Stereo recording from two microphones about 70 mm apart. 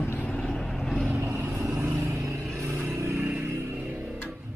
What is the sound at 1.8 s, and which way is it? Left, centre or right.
Vehicle, right.